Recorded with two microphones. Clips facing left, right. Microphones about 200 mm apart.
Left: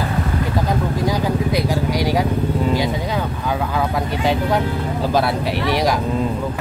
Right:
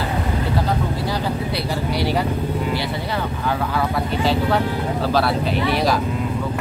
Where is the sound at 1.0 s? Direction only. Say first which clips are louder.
Left 4 dB; 15° left (ahead or behind).